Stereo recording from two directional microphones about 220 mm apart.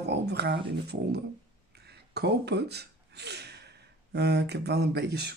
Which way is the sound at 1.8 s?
45° right (ahead or behind).